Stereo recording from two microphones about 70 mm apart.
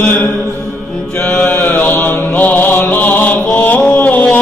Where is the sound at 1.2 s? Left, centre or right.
Left.